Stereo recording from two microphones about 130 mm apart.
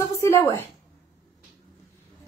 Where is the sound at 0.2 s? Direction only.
20° left (ahead or behind).